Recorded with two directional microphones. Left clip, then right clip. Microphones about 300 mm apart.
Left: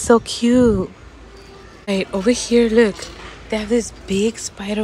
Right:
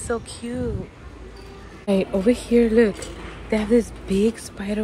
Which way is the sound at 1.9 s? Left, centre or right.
Centre.